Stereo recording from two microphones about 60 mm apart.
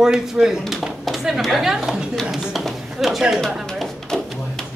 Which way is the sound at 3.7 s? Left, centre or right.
Centre.